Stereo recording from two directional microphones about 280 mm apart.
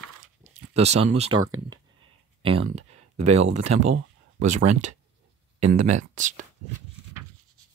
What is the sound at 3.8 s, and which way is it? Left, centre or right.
Speech, right.